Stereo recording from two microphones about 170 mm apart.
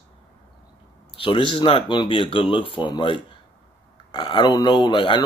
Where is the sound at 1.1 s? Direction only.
30° left (ahead or behind).